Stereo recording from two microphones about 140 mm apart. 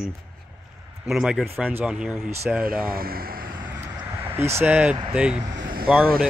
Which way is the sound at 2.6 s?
90° right.